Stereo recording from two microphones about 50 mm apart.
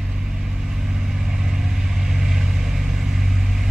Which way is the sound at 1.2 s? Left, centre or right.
Centre.